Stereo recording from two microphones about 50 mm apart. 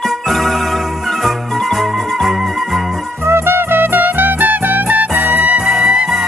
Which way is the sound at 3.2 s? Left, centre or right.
Right.